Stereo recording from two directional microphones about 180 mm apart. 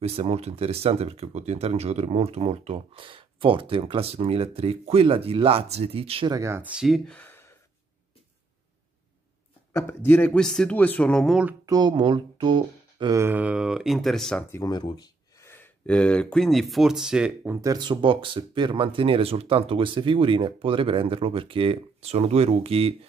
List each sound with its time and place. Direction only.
0.0 s speech: 30° right (ahead or behind)
6.3 s speech: 15° right (ahead or behind)
6.8 s speech: centre (ahead or behind)
9.7 s speech: 10° left (ahead or behind)
11.6 s speech: 20° right (ahead or behind); by 14.4 s centre (ahead or behind)
14.5 s speech: 20° left (ahead or behind); by 22.9 s 35° right (ahead or behind)